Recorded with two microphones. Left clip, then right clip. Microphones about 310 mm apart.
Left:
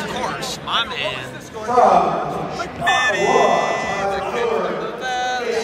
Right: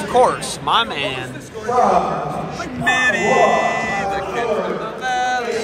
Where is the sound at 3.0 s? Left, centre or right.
Centre.